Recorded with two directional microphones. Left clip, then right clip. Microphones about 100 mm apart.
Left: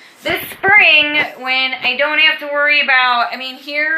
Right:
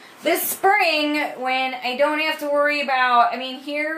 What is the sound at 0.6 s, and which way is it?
Speech, 40° right (ahead or behind).